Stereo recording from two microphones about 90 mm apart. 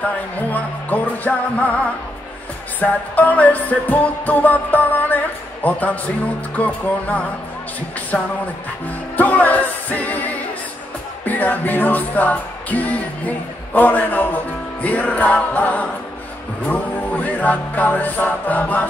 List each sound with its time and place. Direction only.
0.5 s music: 20° left (ahead or behind)
2.8 s music: 20° left (ahead or behind)
8.1 s speech: 10° left (ahead or behind)
9.1 s music: 20° left (ahead or behind)